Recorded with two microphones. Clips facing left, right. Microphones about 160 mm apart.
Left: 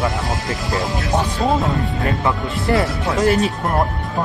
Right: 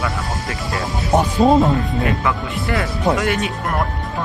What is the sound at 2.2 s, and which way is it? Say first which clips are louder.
Speech: left 1 dB; 35° left (ahead or behind).